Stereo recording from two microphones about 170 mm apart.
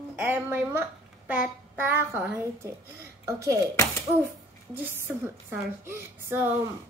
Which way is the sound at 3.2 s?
20° right (ahead or behind).